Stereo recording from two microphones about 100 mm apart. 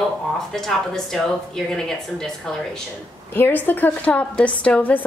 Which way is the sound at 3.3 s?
20° left (ahead or behind).